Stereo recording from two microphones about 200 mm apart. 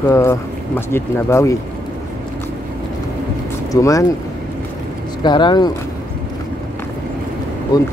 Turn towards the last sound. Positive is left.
turn(degrees=20)  # may be behind; listen again after turning